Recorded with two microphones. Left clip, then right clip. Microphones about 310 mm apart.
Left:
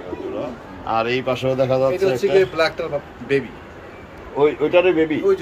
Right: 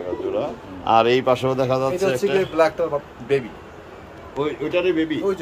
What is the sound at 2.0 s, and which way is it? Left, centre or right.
Speech, right.